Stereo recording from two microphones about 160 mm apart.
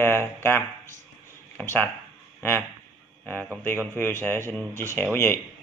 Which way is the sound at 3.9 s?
10° left (ahead or behind).